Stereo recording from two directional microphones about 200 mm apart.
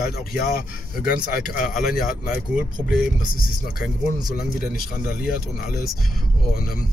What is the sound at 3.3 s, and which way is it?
Speech, 45° left (ahead or behind).